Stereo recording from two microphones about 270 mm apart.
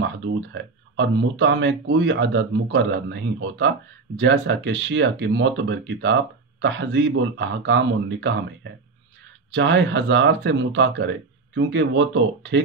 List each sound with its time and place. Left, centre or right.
0.0 s speech: right